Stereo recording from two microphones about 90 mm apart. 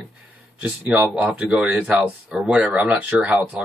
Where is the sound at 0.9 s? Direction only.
10° right (ahead or behind).